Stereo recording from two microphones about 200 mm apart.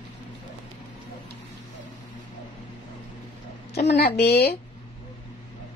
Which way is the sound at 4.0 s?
50° left (ahead or behind).